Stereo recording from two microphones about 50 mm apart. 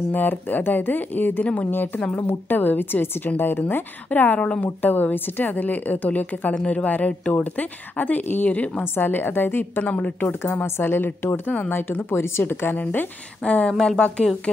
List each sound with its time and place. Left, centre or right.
0.1 s a woman's voice: left
1.4 s speech: left
2.1 s speech: left
4.1 s a woman's voice: left
4.4 s speech: left
4.8 s a woman's voice: left
8.0 s a woman's voice: left
12.1 s speech: left
13.4 s speech: left